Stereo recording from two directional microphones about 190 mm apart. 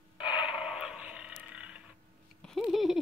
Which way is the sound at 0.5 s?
5° right (ahead or behind).